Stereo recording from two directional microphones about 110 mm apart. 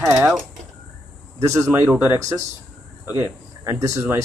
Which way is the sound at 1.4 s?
30° right (ahead or behind).